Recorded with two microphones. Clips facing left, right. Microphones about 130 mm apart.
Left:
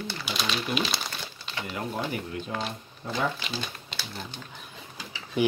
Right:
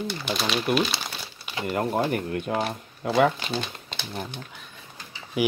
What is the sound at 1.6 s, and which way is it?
Speech, 50° right (ahead or behind).